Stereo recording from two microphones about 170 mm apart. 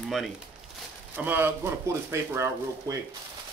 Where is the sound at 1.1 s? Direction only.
10° right (ahead or behind).